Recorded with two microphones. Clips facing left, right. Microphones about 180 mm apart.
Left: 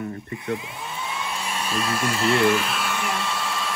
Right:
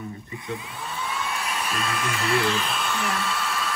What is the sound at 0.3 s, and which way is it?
Speech, 20° left (ahead or behind).